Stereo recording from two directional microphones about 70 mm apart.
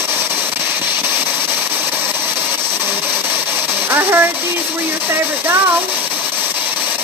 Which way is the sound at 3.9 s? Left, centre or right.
Right.